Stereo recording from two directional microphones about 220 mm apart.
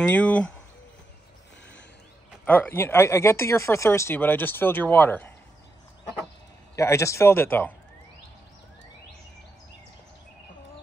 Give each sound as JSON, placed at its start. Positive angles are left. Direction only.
{"t": 0.2, "sound": "speech", "side_deg": 5}
{"t": 2.4, "sound": "speech", "side_deg": 5}
{"t": 6.7, "sound": "speech", "side_deg": 15}